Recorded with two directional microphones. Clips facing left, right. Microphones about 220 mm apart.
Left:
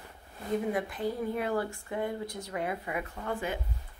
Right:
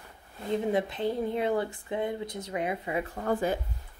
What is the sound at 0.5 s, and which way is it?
Speech, 25° right (ahead or behind).